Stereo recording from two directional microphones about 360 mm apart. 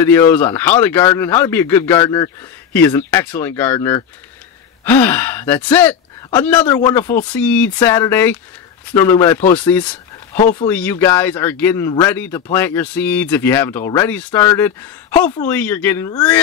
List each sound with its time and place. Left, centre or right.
0.0 s a man's voice: centre
10.3 s speech: centre
10.7 s a man's voice: centre